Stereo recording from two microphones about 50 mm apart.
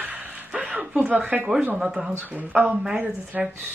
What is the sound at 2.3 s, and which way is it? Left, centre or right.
Speech, right.